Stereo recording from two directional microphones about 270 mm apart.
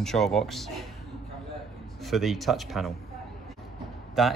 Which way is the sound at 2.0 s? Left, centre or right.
Centre.